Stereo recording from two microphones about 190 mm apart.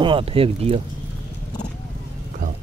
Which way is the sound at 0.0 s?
30° right (ahead or behind).